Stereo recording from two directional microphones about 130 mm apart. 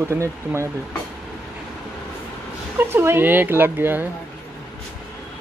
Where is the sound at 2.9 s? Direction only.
15° right (ahead or behind).